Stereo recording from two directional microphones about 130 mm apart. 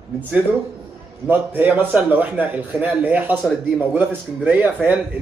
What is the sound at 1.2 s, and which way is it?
Speech, 15° right (ahead or behind).